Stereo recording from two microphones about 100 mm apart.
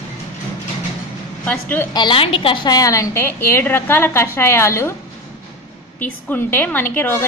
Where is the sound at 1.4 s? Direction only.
15° left (ahead or behind).